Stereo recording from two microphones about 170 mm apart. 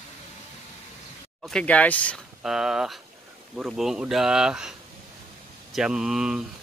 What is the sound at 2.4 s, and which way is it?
Speech, 5° right (ahead or behind).